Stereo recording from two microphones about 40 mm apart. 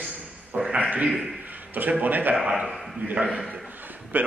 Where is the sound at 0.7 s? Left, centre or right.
Right.